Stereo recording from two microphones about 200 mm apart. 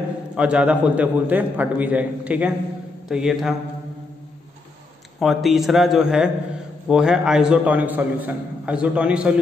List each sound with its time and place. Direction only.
0.4 s a man's voice: 5° right (ahead or behind)
5.2 s a man's voice: centre (ahead or behind)